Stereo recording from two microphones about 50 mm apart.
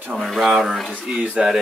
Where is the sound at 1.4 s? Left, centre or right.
Centre.